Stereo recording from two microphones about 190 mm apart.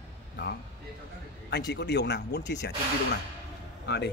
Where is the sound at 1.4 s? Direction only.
60° left (ahead or behind).